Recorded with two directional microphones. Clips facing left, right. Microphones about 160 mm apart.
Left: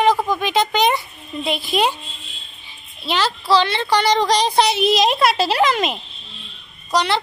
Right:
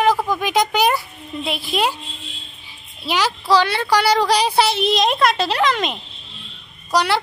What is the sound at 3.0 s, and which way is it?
Speech, 10° right (ahead or behind).